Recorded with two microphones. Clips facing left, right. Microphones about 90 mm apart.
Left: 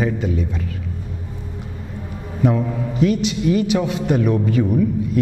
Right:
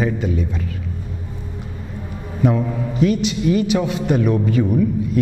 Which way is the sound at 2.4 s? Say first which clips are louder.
Even; 15° right (ahead or behind).